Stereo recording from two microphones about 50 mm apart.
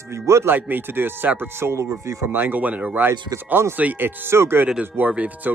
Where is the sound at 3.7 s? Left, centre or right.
Right.